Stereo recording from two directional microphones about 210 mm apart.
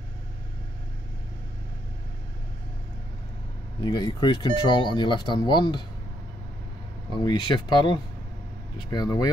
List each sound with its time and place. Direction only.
3.8 s speech: 20° left (ahead or behind)
7.2 s speech: 20° left (ahead or behind)